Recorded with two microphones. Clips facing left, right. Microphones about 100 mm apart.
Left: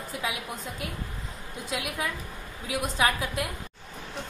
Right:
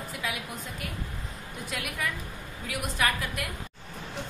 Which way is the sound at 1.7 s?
20° left (ahead or behind).